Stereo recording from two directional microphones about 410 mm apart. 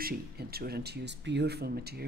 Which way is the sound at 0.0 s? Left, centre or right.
Right.